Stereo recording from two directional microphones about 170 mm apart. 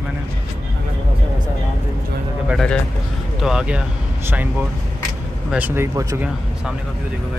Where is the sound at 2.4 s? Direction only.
Centre (ahead or behind); by 6.2 s 15° right (ahead or behind).